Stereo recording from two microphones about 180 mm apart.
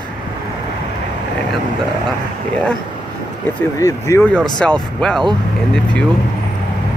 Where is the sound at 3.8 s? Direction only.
15° left (ahead or behind).